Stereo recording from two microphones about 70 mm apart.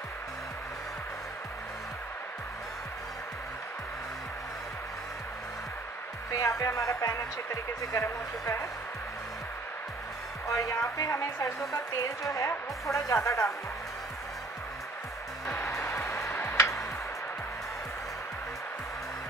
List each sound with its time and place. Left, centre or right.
6.3 s speech: left
8.0 s speech: left
10.5 s speech: left
15.8 s music: left